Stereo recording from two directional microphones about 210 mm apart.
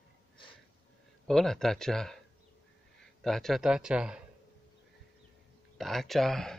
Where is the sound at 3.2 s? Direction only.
Centre (ahead or behind).